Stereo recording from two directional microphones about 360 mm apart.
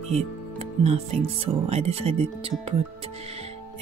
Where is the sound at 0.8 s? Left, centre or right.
Centre.